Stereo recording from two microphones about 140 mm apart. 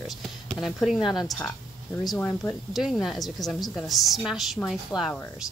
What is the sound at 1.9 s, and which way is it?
Speech, 30° left (ahead or behind).